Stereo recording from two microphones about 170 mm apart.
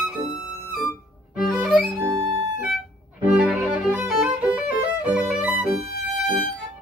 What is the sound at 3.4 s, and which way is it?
Violin, 5° right (ahead or behind).